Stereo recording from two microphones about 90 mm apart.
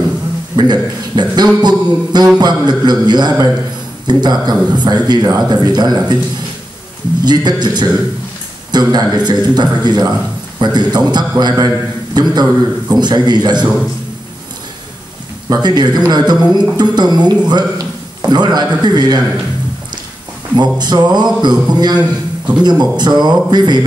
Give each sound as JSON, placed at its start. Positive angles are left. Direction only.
{"t": 0.6, "sound": "a man's voice", "side_deg": -50}
{"t": 7.2, "sound": "a man's voice", "side_deg": -50}
{"t": 15.5, "sound": "a man's voice", "side_deg": -50}
{"t": 20.5, "sound": "a man's voice", "side_deg": -50}